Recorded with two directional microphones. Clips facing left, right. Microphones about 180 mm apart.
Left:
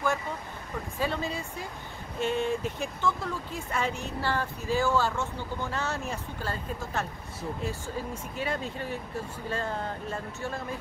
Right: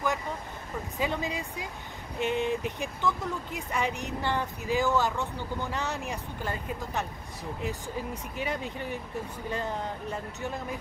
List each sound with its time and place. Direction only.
0.9 s speech: 15° right (ahead or behind)